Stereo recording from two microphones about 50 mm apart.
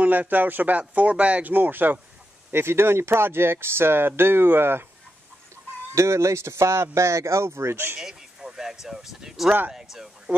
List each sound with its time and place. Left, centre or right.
0.0 s speech: right
2.5 s speech: right
5.9 s speech: right
8.0 s a sound: centre
8.8 s speech: centre